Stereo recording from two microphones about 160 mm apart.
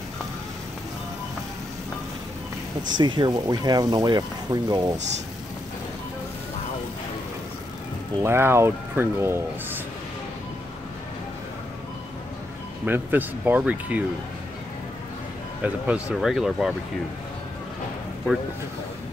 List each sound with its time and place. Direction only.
3.0 s speech: 30° right (ahead or behind)
8.2 s speech: 15° right (ahead or behind)
12.8 s speech: 10° right (ahead or behind)
15.6 s speech: 5° right (ahead or behind)